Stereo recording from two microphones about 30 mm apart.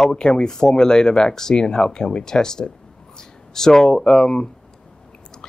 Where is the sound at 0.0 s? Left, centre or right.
Left.